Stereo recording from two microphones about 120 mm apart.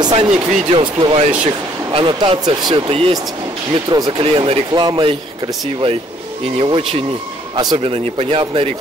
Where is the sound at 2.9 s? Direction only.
50° right (ahead or behind).